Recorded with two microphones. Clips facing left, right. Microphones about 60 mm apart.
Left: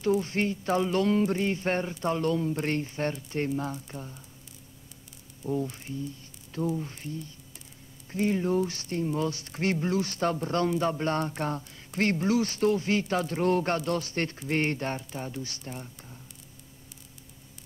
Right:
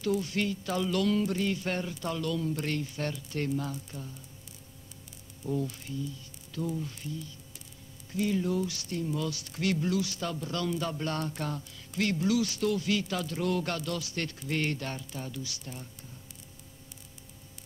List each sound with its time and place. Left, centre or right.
0.2 s speech: left
5.6 s speech: left